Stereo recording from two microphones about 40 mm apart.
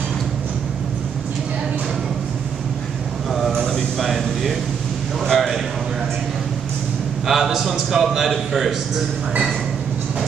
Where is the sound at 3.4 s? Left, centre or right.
Centre.